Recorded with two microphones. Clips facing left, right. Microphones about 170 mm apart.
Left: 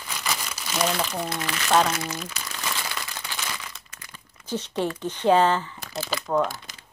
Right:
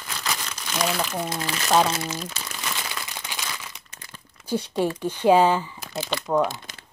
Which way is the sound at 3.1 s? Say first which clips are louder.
Even; 15° right (ahead or behind).